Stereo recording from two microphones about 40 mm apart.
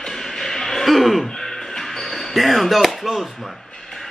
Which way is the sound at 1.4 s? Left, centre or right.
Centre.